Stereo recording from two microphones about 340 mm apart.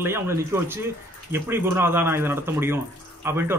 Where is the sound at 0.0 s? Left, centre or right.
Centre.